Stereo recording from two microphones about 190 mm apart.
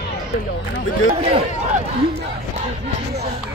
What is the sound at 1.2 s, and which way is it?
Speech, 30° right (ahead or behind).